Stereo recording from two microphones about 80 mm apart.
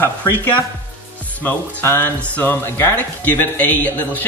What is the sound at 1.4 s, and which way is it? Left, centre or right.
Speech, left.